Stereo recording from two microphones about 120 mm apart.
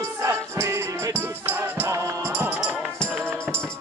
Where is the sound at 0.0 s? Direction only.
25° right (ahead or behind).